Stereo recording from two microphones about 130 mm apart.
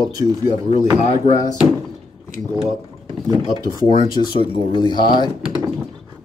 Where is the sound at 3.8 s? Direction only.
35° left (ahead or behind).